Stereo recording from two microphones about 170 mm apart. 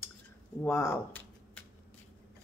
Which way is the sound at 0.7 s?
15° left (ahead or behind).